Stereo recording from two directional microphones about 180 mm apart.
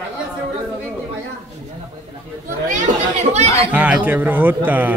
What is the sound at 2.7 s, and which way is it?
Chatter, 40° right (ahead or behind).